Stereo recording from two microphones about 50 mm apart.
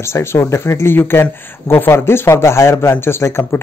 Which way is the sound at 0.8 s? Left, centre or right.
Left.